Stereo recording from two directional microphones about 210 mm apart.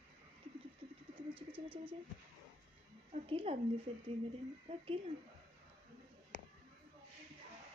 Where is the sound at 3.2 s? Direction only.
25° right (ahead or behind).